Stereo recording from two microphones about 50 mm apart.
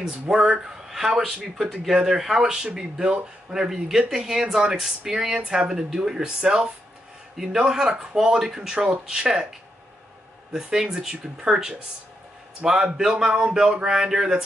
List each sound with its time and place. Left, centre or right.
0.0 s speech: centre